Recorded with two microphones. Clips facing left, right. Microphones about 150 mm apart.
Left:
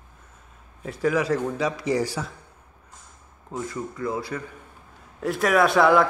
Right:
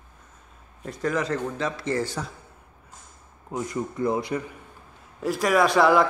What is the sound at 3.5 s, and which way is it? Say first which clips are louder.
Speech: right 2 dB; 20° right (ahead or behind).